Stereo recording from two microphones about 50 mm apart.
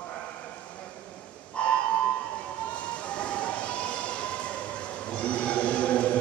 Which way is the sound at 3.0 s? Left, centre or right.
Left.